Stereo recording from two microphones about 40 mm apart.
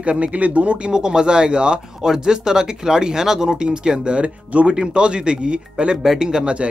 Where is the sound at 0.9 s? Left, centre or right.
Centre.